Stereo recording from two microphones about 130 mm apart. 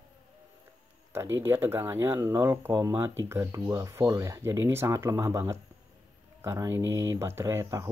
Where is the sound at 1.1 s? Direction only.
20° right (ahead or behind).